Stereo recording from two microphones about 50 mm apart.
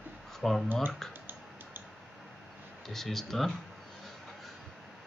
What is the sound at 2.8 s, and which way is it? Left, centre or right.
Speech, centre.